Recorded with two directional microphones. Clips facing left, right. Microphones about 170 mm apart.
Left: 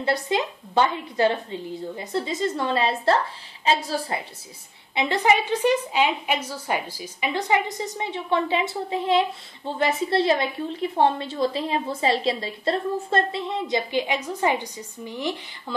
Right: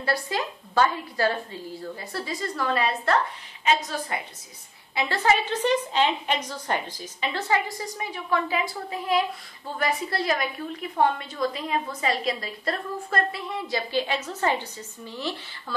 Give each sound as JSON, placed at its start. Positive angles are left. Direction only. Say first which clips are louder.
{"t": 0.0, "sound": "a woman's voice", "louder": "left 4 dB", "side_deg": 20}
{"t": 4.9, "sound": "a woman's voice", "louder": "left 2 dB", "side_deg": 20}